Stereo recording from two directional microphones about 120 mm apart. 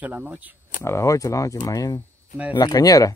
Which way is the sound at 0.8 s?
25° left (ahead or behind).